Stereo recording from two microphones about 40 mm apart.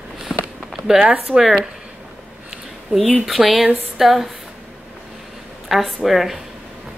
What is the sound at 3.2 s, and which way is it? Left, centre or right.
Speech, centre.